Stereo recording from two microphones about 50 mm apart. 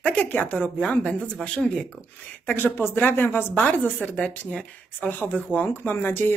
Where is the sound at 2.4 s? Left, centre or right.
Left.